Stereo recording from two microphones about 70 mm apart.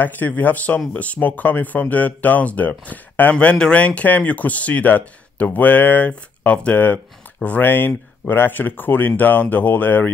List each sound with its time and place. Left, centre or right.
0.3 s speech: left